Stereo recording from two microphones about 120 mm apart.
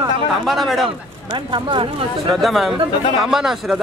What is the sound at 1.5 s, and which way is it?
Speech, 45° right (ahead or behind).